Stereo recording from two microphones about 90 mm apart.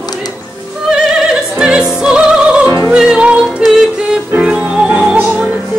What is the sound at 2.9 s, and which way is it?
Music, 10° right (ahead or behind).